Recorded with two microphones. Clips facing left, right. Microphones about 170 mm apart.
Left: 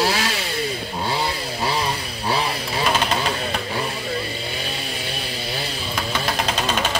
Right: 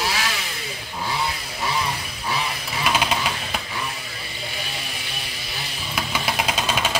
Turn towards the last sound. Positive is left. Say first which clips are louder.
# left 2 dB
turn(degrees=-10)  # may be behind; listen again after turning